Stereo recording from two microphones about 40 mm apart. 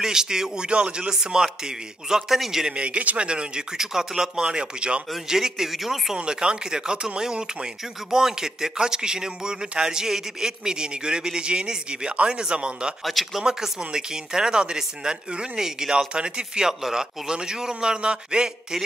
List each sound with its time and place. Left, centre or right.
0.0 s speech: centre
0.7 s speech: right; by 2.6 s centre
2.7 s speech: right
3.3 s speech: right
3.8 s speech: centre
5.1 s speech: centre
6.1 s speech: right
13.0 s speech: centre
13.4 s speech: centre